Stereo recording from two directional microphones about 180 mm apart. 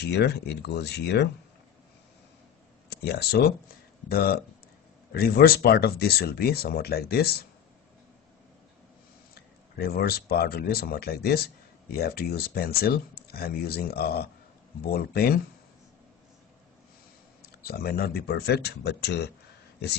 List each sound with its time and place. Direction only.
0.0 s speech: 70° left (ahead or behind)
2.9 s speech: 65° left (ahead or behind)
9.3 s speech: 60° left (ahead or behind)
17.4 s speech: 60° left (ahead or behind)